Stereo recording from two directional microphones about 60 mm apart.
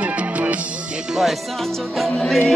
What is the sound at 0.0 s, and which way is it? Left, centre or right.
Music, right.